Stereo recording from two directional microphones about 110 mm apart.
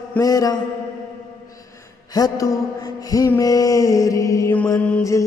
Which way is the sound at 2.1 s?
35° left (ahead or behind).